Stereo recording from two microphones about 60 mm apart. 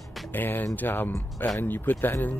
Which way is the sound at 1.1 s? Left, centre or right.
Left.